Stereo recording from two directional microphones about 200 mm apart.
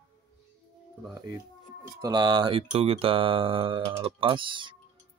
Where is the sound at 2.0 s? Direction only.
20° right (ahead or behind).